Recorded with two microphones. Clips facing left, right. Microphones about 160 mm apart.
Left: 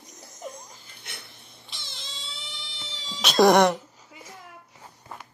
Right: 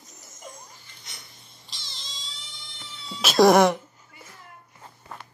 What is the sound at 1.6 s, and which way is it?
Cat, 60° left (ahead or behind).